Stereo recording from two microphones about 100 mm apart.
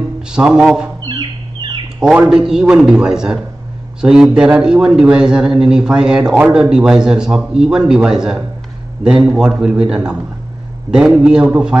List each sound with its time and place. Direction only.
0.3 s speech: 10° right (ahead or behind)
1.0 s chicken: 45° right (ahead or behind)
2.0 s speech: 5° right (ahead or behind)